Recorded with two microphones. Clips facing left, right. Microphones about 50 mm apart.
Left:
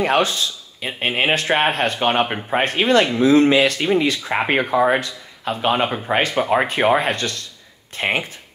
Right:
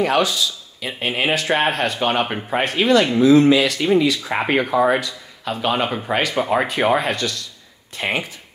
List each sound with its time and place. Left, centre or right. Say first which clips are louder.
0.0 s speech: even; left